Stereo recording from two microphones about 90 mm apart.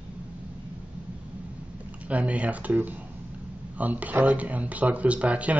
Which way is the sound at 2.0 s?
15° right (ahead or behind).